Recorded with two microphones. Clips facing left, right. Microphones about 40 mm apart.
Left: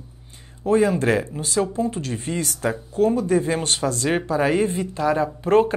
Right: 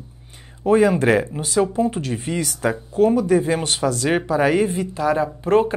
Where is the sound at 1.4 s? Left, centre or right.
Centre.